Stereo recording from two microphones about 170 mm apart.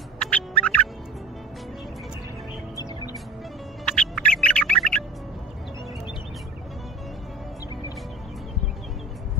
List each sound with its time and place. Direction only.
0.2 s turkey: 5° left (ahead or behind)
2.7 s music: 20° left (ahead or behind)
3.9 s music: 5° left (ahead or behind)